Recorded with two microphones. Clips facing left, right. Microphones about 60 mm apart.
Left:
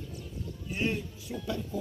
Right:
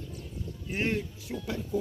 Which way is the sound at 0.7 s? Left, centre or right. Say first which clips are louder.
Right 2 dB; right.